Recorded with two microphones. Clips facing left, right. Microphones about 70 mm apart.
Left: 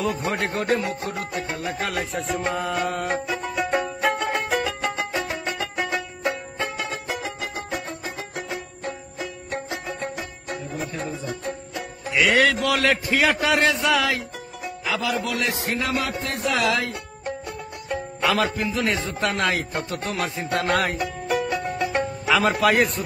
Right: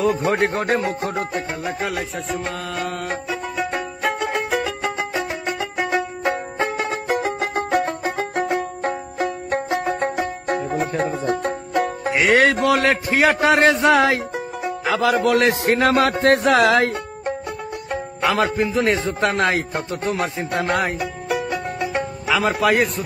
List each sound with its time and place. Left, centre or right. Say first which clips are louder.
0.0 s a sound: right 6 dB; right
1.8 s music: right 2 dB; centre
5.3 s music: right 3 dB; right
5.9 s music: right 5 dB; right
12.2 s a sound: right 3 dB; right
14.9 s a man's voice: right 8 dB; right
16.5 s speech: right 7 dB; right
18.2 s a man's voice: right 4 dB; right
20.6 s music: right 1 dB; centre